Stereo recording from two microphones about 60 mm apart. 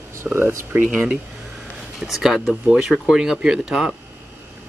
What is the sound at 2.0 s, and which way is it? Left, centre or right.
Speech, centre.